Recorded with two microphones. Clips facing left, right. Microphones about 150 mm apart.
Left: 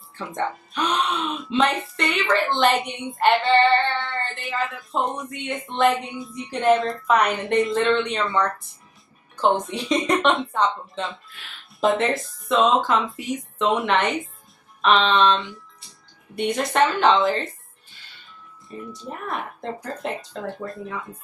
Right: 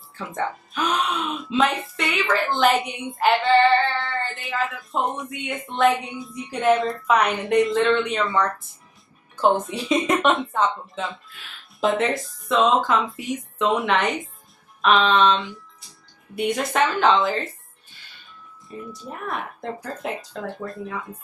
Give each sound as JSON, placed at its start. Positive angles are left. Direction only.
{"t": 0.2, "sound": "speech", "side_deg": 0}
{"t": 18.7, "sound": "speech", "side_deg": 0}